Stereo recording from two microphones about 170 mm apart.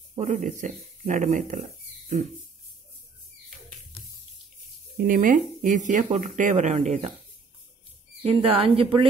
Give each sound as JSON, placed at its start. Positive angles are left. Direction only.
{"t": 0.2, "sound": "speech", "side_deg": -45}
{"t": 4.9, "sound": "speech", "side_deg": -50}
{"t": 8.2, "sound": "speech", "side_deg": -35}